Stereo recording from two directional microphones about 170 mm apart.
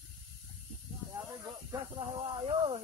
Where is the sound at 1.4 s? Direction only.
25° right (ahead or behind).